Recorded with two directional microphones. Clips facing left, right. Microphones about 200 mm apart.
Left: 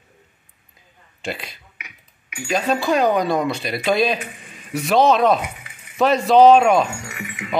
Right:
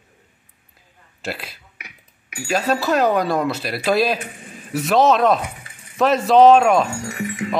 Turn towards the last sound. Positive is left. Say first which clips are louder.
# right 7 dB
turn(degrees=-35)  # may be behind; listen again after turning